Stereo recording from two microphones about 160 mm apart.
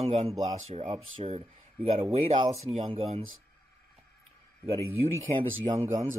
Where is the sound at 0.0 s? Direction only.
45° right (ahead or behind).